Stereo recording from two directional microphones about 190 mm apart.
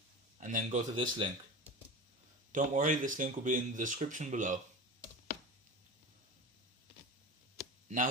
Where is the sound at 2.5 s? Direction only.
40° right (ahead or behind).